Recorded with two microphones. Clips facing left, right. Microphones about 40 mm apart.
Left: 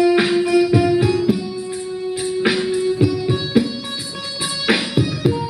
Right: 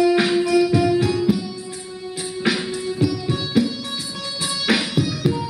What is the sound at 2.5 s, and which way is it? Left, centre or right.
Music, centre.